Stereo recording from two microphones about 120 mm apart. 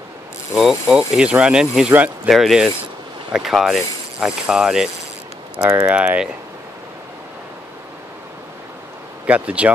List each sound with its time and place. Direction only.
0.6 s speech: 5° right (ahead or behind)
5.6 s speech: 20° right (ahead or behind)
5.9 s speech: 10° right (ahead or behind)
9.2 s speech: 10° right (ahead or behind)